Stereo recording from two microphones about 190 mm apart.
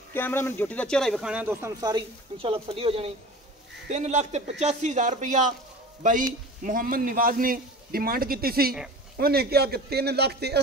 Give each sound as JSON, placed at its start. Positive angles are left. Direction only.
{"t": 0.1, "sound": "speech", "side_deg": 10}
{"t": 6.6, "sound": "a man's voice", "side_deg": -45}